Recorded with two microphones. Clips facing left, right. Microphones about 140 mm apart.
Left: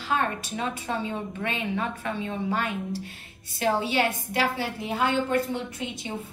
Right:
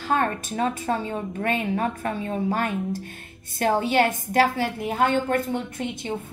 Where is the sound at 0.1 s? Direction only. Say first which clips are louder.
Right 3 dB; 45° right (ahead or behind).